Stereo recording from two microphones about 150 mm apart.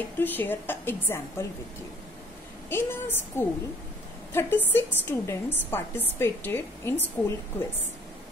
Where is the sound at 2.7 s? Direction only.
15° left (ahead or behind).